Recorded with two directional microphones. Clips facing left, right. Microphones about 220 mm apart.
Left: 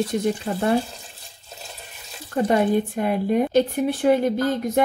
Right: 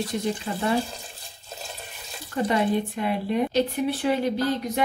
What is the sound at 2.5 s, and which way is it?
A woman's voice, 45° left (ahead or behind).